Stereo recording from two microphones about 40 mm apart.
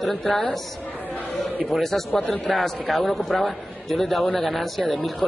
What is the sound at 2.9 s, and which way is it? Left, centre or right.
A man's voice, centre.